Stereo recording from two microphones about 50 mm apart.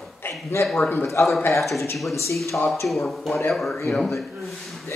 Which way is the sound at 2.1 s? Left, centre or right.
Left.